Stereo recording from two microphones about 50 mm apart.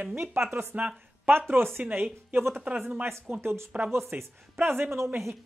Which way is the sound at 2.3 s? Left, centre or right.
Right.